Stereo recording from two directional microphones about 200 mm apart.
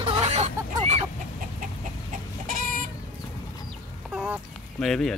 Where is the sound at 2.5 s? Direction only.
40° right (ahead or behind).